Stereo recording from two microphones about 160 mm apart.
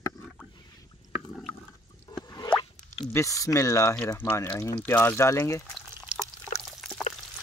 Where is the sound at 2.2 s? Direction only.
25° left (ahead or behind).